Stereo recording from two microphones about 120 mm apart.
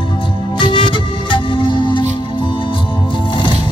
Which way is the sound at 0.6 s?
45° left (ahead or behind).